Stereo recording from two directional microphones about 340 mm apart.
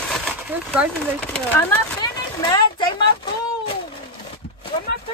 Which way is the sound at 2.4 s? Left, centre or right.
Centre.